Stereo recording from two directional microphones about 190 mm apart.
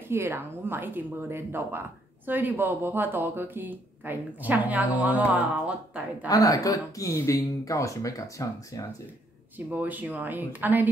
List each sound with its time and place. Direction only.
0.1 s speech: 10° right (ahead or behind)
6.2 s speech: 20° left (ahead or behind)
9.7 s speech: 10° right (ahead or behind)